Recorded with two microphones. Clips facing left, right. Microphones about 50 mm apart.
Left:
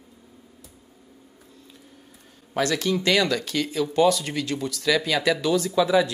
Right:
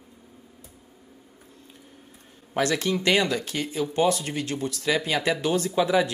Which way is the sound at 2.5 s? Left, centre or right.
Right.